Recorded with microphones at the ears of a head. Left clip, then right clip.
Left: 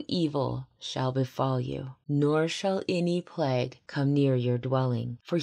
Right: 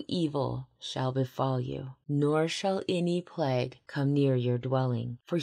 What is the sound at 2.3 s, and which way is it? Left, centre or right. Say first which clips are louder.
Speech: left 1 dB; centre.